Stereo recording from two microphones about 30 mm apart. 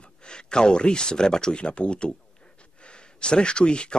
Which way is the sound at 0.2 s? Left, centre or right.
Left.